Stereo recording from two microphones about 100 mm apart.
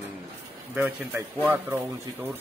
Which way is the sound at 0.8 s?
20° right (ahead or behind).